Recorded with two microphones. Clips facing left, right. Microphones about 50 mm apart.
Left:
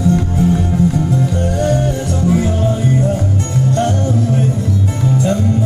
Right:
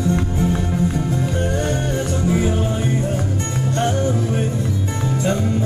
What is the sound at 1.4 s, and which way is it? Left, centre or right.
Music, centre.